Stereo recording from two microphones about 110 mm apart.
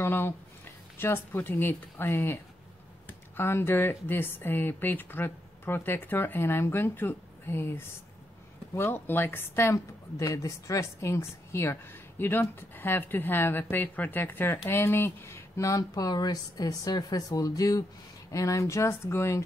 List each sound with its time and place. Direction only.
0.0 s a woman's voice: 20° left (ahead or behind)